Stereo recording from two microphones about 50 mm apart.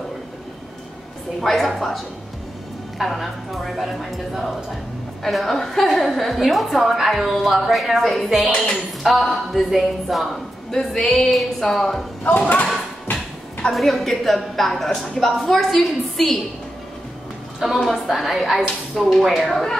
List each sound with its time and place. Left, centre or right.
1.4 s a woman's voice: centre
3.0 s a woman's voice: centre
10.7 s a woman's voice: centre
12.2 s speech: left
13.7 s a woman's voice: centre
17.6 s a woman's voice: centre